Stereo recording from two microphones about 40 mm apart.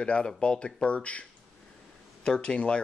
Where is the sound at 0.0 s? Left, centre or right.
Left.